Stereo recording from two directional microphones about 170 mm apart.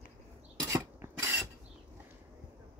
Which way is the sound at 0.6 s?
15° right (ahead or behind).